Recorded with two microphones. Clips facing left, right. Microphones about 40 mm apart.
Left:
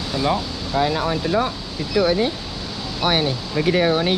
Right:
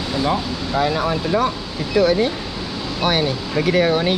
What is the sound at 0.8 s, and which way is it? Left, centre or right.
Speech, centre.